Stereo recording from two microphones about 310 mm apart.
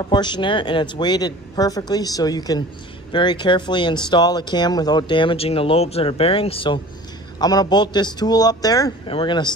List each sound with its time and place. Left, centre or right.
0.0 s speech: centre